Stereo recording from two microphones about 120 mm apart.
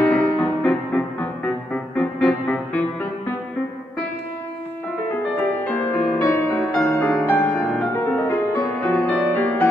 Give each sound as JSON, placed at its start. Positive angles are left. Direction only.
{"t": 0.0, "sound": "music", "side_deg": 10}
{"t": 5.7, "sound": "music", "side_deg": 15}